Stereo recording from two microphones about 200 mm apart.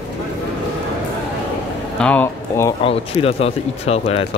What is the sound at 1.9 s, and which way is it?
Speech, 5° left (ahead or behind).